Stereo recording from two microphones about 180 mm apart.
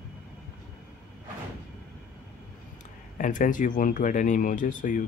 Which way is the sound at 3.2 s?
45° left (ahead or behind).